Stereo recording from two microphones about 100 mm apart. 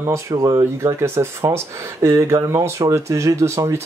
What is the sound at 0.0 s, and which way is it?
Speech, 30° right (ahead or behind).